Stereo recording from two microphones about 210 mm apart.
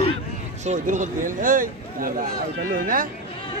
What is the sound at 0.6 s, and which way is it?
Speech, 35° right (ahead or behind).